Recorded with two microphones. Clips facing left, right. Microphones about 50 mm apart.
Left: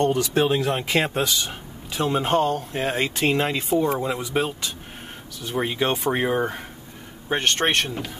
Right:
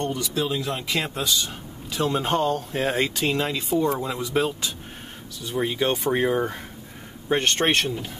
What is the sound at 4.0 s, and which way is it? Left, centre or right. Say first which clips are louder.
Speech: even; centre.